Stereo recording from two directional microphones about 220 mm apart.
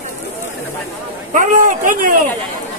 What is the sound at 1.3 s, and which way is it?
Speech, 35° right (ahead or behind).